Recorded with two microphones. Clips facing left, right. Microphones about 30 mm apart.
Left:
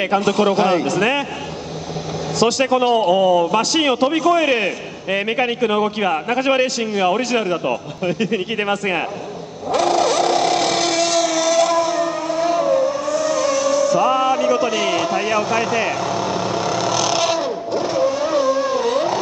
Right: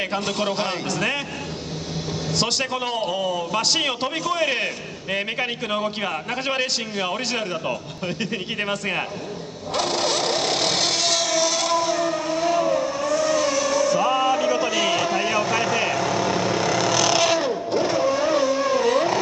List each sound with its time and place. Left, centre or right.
0.2 s a man's voice: left
2.4 s a man's voice: left
5.1 s speech: left
6.3 s a man's voice: left
9.8 s vehicle: right
12.4 s vehicle: centre
13.1 s vehicle: right
14.0 s music: centre
14.7 s vehicle: centre